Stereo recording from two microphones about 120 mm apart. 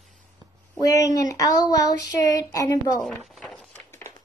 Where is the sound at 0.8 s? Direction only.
30° left (ahead or behind).